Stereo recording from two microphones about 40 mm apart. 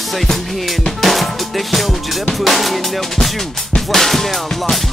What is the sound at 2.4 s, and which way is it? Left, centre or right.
Drum, centre.